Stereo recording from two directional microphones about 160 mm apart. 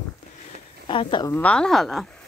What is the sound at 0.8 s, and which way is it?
Speech, 30° left (ahead or behind).